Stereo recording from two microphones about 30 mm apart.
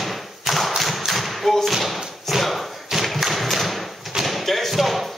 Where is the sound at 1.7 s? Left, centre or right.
Centre.